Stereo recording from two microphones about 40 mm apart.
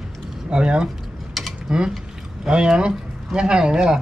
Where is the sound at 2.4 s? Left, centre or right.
Centre.